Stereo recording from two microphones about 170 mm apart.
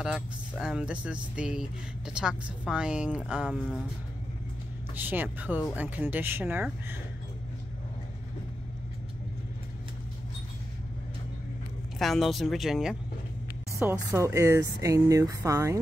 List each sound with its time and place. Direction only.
0.0 s speech: 5° right (ahead or behind)
4.9 s speech: 10° right (ahead or behind)
12.0 s speech: centre (ahead or behind)
13.7 s speech: 15° right (ahead or behind)